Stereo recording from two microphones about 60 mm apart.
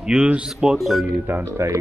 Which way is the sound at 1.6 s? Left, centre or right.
Right.